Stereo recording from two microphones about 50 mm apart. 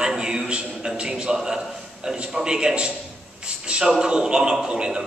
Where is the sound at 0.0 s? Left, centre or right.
Centre.